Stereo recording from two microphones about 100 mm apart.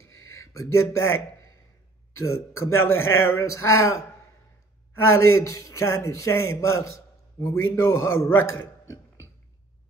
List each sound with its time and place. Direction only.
0.5 s a man's voice: 30° left (ahead or behind)